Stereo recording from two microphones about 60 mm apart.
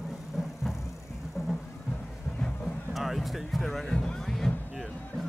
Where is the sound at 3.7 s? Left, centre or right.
Centre.